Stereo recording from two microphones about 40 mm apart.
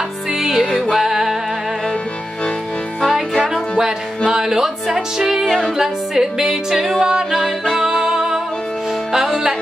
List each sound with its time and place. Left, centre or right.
0.4 s music: centre
4.3 s music: centre
7.0 s a capella: centre
7.2 s music: centre